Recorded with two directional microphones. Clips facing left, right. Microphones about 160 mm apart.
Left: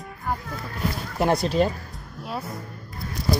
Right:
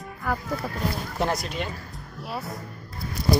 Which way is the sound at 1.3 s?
35° left (ahead or behind).